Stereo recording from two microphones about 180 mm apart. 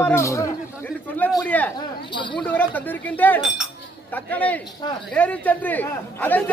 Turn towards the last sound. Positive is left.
turn(degrees=10)  # may be behind; listen again after turning